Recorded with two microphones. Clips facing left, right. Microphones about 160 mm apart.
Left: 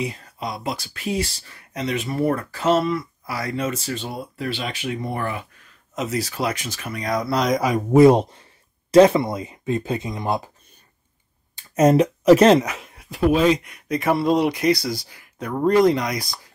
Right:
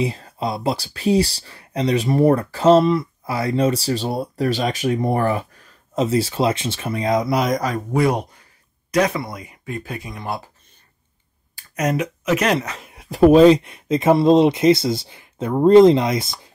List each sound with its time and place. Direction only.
0.0 s speech: 30° right (ahead or behind)
7.3 s speech: centre (ahead or behind)
7.6 s speech: 15° left (ahead or behind)
8.0 s speech: 25° left (ahead or behind)
11.5 s speech: 30° left (ahead or behind)
13.1 s speech: 40° right (ahead or behind); by 16.3 s 25° right (ahead or behind)